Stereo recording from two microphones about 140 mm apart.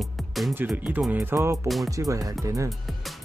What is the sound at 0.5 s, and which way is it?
Music, 10° right (ahead or behind).